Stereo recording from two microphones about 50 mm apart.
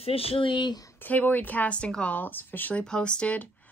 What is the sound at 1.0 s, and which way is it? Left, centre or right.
Speech, left.